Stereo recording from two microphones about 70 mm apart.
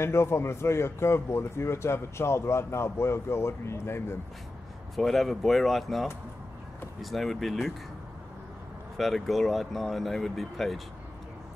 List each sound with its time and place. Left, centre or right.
0.0 s speech: left
4.9 s speech: centre
8.9 s speech: centre